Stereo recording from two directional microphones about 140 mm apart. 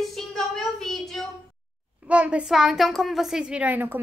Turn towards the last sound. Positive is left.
turn(degrees=-15)  # may be behind; listen again after turning